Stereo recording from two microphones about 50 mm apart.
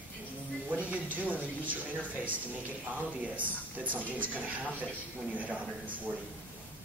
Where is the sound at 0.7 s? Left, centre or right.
Right.